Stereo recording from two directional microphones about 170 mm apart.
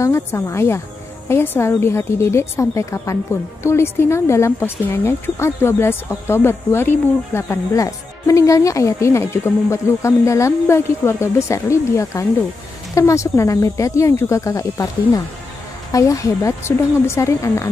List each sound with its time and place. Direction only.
0.0 s speech: 15° left (ahead or behind)